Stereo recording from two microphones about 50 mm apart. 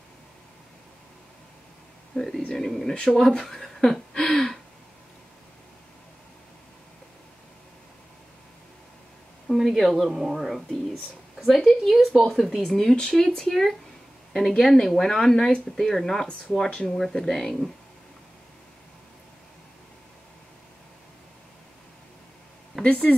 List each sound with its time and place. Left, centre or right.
2.1 s speech: centre
4.1 s a sound: centre
9.5 s speech: centre
22.8 s speech: left